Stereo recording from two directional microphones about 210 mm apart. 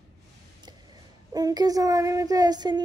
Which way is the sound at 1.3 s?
20° right (ahead or behind).